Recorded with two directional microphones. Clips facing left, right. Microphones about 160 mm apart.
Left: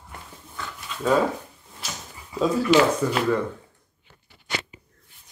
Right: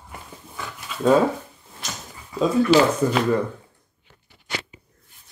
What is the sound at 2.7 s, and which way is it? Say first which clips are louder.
Speech: right 1 dB; 35° right (ahead or behind).